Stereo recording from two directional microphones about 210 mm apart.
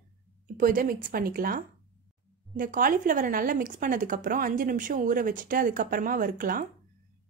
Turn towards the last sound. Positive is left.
turn(degrees=-40)  # may be behind; listen again after turning